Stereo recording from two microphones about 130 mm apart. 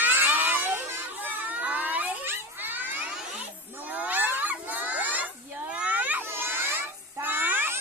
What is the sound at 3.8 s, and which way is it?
Crowd, 10° right (ahead or behind).